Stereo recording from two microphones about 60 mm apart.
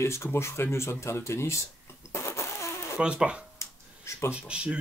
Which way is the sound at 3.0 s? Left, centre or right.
Centre.